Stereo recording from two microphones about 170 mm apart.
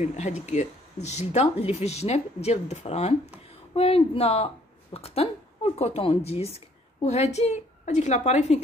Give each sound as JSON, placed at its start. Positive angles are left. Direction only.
{"t": 0.0, "sound": "a woman's voice", "side_deg": 45}